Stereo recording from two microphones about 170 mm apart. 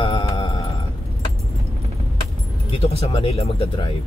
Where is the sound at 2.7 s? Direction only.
35° left (ahead or behind).